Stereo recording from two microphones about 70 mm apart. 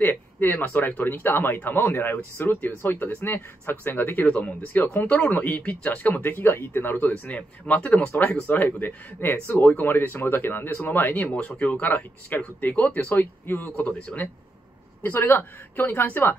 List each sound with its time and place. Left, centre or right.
0.0 s speech: left
11.3 s speech: centre
15.0 s speech: left